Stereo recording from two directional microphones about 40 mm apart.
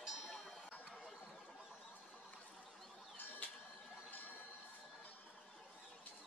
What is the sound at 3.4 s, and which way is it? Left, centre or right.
Bird, left.